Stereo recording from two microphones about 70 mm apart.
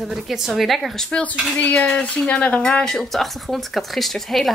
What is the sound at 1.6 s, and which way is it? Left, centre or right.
Speech, centre.